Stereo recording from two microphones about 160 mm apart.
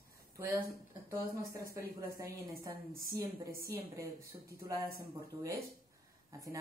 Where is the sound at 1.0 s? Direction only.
20° right (ahead or behind).